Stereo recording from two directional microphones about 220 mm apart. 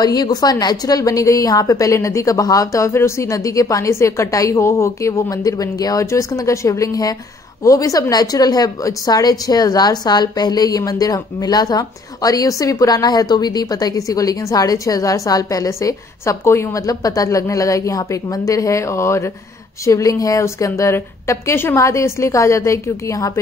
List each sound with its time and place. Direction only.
0.0 s a woman's voice: 20° left (ahead or behind)